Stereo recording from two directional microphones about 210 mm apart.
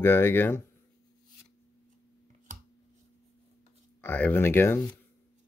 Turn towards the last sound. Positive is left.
turn(degrees=10)  # may be behind; listen again after turning